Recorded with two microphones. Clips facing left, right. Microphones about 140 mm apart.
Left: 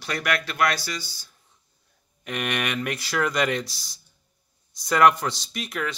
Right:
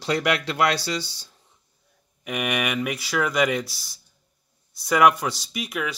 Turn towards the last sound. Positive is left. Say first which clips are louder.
# right 1 dB
turn(degrees=-10)  # may be behind; listen again after turning